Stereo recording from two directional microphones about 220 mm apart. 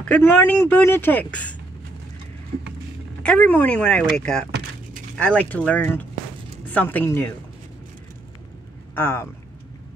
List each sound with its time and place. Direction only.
0.1 s a man's voice: 10° left (ahead or behind)
3.2 s speech: 5° left (ahead or behind)
4.5 s keys jangling: 50° right (ahead or behind)
5.1 s a man's voice: 5° left (ahead or behind)
8.9 s a man's voice: 10° left (ahead or behind)